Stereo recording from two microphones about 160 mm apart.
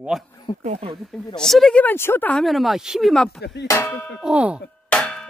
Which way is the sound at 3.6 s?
20° left (ahead or behind).